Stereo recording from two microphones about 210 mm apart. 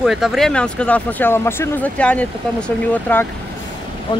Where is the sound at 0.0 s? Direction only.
Centre (ahead or behind).